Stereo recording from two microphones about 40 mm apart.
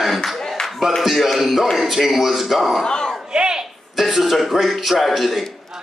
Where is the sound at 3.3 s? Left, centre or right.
Right.